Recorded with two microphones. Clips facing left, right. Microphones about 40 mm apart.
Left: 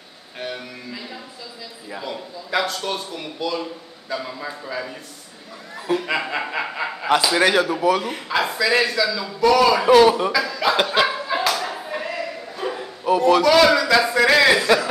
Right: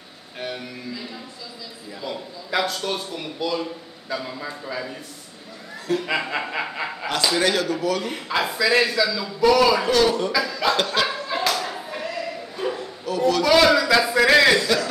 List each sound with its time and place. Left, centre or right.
0.4 s a man's voice: centre
2.0 s a man's voice: centre
5.9 s a man's voice: centre
7.3 s a man's voice: centre
8.1 s a man's voice: centre
9.8 s speech: centre
10.3 s speech: centre
10.8 s clapping: centre
12.7 s bow-wow: left
13.4 s a man's voice: centre